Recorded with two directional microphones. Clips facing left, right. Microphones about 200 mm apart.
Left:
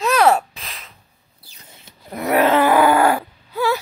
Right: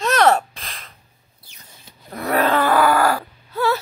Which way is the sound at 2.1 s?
15° left (ahead or behind).